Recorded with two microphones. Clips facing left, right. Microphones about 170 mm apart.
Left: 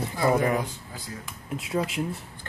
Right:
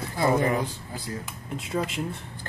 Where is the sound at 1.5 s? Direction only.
Centre (ahead or behind).